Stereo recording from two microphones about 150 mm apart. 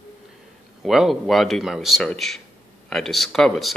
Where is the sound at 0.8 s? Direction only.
Centre (ahead or behind).